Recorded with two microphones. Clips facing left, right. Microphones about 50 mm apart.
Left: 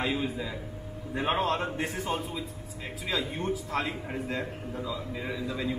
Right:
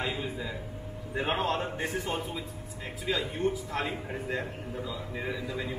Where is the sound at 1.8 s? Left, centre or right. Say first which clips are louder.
Left 1 dB; centre.